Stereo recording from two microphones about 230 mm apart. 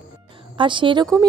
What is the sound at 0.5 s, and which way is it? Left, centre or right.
Speech, right.